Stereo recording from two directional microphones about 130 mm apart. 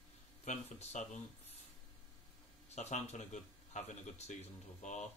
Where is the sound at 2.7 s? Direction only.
60° left (ahead or behind).